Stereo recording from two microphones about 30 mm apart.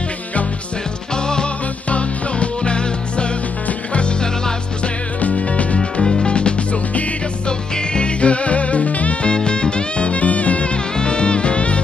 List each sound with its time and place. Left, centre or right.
1.1 s music: left
1.9 s music: left
5.2 s music: left
6.2 s music: left
7.4 s music: left
9.2 s music: left
11.0 s music: left